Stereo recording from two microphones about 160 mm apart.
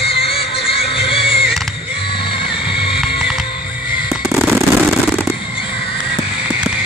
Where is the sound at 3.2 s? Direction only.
5° right (ahead or behind).